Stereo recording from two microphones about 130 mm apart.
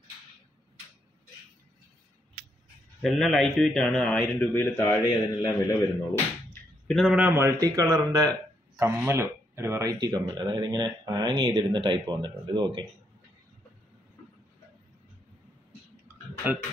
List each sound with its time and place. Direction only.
3.0 s a man's voice: centre (ahead or behind); by 5.8 s 25° left (ahead or behind)
6.9 s a man's voice: centre (ahead or behind)
7.2 s speech: 15° right (ahead or behind); by 12.8 s 35° right (ahead or behind)